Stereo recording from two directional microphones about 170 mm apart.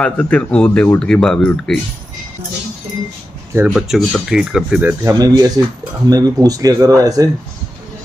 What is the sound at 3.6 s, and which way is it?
Speech, centre (ahead or behind).